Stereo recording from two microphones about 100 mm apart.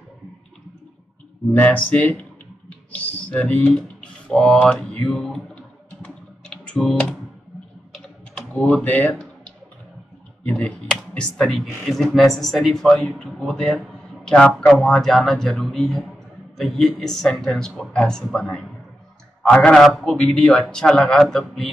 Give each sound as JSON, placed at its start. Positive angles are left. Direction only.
{"t": 1.5, "sound": "speech", "side_deg": 15}
{"t": 6.0, "sound": "typing", "side_deg": 10}
{"t": 8.4, "sound": "speech", "side_deg": 10}
{"t": 10.6, "sound": "speech", "side_deg": 5}